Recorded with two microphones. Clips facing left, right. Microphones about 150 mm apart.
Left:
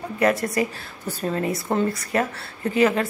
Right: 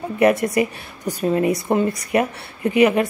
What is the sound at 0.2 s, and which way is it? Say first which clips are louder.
A woman's voice: right 4 dB; 20° right (ahead or behind).